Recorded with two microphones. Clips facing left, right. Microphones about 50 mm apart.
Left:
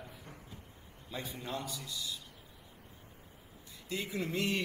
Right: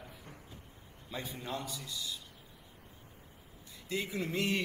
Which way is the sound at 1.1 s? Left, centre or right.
Right.